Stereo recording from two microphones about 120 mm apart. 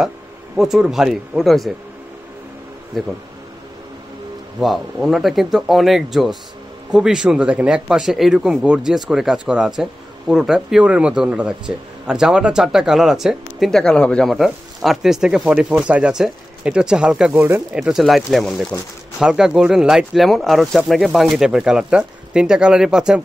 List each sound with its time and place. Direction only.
0.6 s speech: 5° right (ahead or behind)
2.9 s speech: centre (ahead or behind)
4.6 s speech: centre (ahead or behind)
17.3 s speech: 20° right (ahead or behind)
17.7 s speech: 5° right (ahead or behind)